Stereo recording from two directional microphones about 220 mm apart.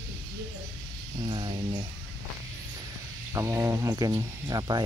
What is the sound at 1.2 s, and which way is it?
Speech, 20° right (ahead or behind).